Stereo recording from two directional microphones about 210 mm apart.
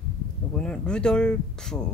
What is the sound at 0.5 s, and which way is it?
Speech, 5° left (ahead or behind).